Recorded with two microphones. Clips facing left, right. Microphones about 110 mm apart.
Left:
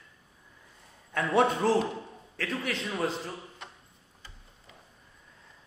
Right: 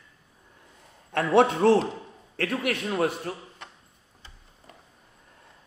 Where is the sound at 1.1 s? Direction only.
65° right (ahead or behind).